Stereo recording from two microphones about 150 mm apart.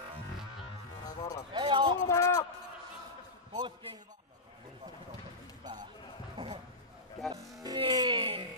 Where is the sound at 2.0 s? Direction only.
20° left (ahead or behind).